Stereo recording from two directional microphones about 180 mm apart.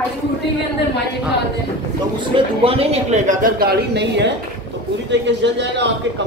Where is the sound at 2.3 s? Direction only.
30° right (ahead or behind).